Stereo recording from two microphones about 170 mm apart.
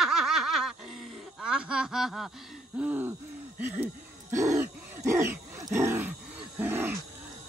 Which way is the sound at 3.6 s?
10° right (ahead or behind).